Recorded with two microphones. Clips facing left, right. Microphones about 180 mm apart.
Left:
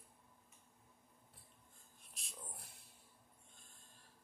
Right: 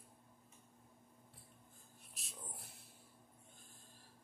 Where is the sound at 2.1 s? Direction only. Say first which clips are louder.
Right 1 dB; centre (ahead or behind).